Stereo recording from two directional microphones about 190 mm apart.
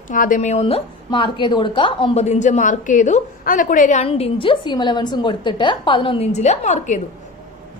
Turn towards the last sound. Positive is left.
turn(degrees=35)  # may be behind; listen again after turning